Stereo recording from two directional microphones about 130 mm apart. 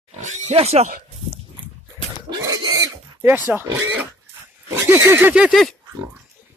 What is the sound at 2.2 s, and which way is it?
Pig, 30° right (ahead or behind).